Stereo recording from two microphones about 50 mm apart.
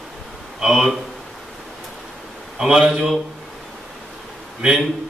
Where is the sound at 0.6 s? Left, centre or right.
Centre.